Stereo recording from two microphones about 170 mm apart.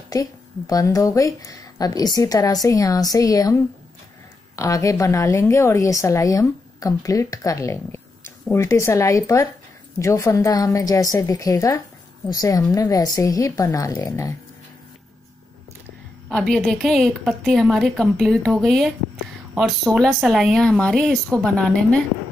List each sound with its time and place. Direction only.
0.1 s a woman's voice: 20° left (ahead or behind)
16.3 s speech: centre (ahead or behind)